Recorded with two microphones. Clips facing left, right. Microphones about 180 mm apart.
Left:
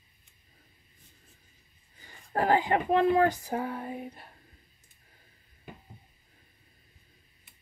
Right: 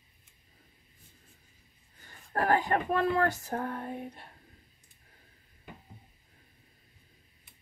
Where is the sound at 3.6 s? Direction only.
5° left (ahead or behind).